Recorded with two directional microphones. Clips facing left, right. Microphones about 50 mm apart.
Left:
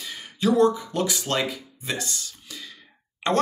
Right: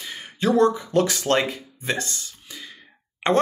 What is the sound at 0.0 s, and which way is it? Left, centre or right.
Speech, right.